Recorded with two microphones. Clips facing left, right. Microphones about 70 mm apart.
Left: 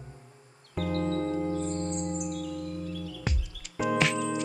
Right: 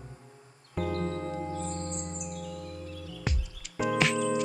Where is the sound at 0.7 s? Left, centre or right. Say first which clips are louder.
Left 1 dB; right.